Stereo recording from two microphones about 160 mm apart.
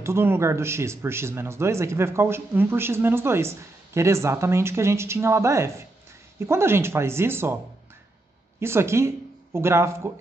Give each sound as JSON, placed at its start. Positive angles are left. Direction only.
{"t": 0.0, "sound": "speech", "side_deg": -15}
{"t": 8.5, "sound": "a man's voice", "side_deg": -15}